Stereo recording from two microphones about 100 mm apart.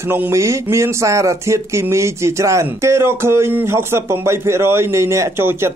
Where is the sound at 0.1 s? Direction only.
25° right (ahead or behind).